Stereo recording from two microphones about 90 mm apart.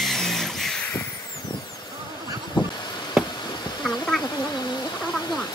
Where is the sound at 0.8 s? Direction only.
20° left (ahead or behind).